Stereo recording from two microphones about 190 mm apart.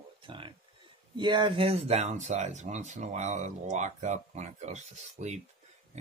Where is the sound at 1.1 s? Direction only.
25° right (ahead or behind).